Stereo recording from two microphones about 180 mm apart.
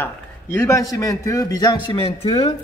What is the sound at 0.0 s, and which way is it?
A man's voice, 15° left (ahead or behind).